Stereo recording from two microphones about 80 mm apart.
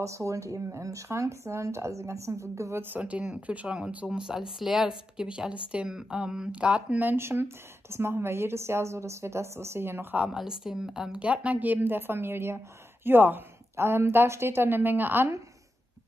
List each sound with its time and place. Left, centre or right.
0.0 s speech: right
2.8 s speech: right
10.1 s a woman's voice: centre